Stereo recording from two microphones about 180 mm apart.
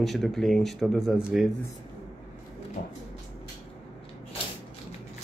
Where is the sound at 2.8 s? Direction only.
50° left (ahead or behind).